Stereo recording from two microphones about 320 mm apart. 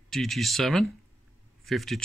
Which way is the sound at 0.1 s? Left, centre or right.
Centre.